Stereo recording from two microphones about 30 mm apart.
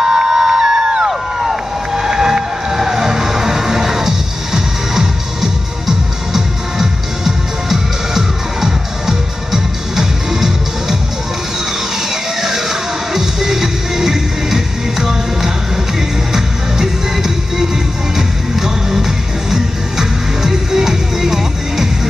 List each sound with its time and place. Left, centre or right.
0.0 s music: centre
1.0 s crowd: centre
12.1 s music: centre